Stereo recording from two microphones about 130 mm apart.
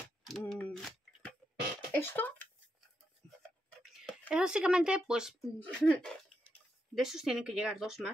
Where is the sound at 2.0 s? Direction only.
15° left (ahead or behind).